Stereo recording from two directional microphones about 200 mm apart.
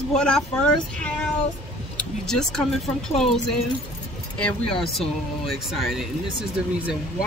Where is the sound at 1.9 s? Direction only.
5° left (ahead or behind).